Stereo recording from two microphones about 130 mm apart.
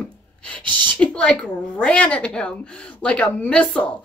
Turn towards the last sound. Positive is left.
turn(degrees=10)  # may be behind; listen again after turning